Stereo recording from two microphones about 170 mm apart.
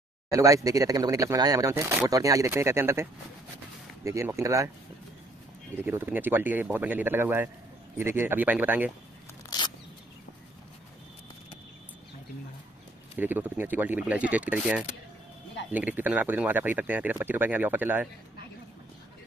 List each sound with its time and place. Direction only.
0.3 s speech: 20° right (ahead or behind)
5.9 s speech: 10° right (ahead or behind)
9.5 s a sound: 25° left (ahead or behind)
13.2 s speech: 10° right (ahead or behind)